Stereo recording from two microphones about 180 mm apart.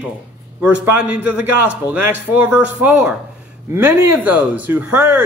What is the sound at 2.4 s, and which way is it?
Speech, 10° right (ahead or behind).